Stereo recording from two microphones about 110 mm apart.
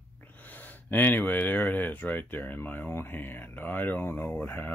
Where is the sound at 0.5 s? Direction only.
15° left (ahead or behind).